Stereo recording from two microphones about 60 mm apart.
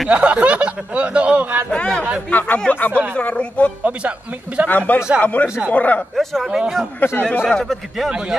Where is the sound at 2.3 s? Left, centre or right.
Left.